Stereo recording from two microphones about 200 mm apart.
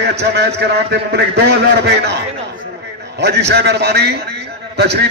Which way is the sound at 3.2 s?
60° right (ahead or behind).